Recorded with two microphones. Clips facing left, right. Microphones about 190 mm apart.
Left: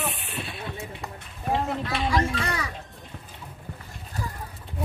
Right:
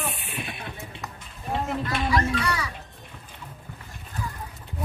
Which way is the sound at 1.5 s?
50° right (ahead or behind).